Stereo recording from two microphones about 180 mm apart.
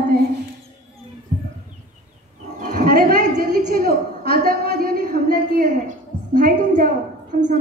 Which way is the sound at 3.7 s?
55° right (ahead or behind).